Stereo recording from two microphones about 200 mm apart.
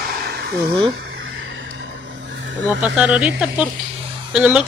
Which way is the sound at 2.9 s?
5° right (ahead or behind).